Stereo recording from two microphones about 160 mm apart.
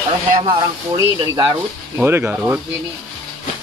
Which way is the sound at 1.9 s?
15° right (ahead or behind).